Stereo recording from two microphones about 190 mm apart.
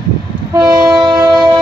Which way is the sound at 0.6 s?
20° right (ahead or behind).